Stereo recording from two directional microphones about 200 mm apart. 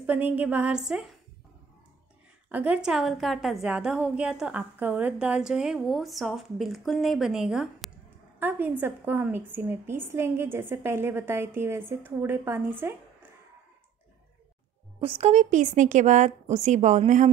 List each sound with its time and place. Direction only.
0.0 s a woman's voice: 10° right (ahead or behind)
2.5 s a woman's voice: 5° right (ahead or behind)
15.0 s a woman's voice: 30° right (ahead or behind)